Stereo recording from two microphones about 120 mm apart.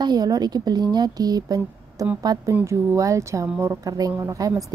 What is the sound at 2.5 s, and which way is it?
Speech, 20° right (ahead or behind).